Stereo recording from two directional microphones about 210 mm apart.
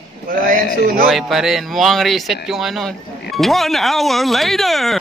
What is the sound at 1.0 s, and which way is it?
Speech, centre (ahead or behind).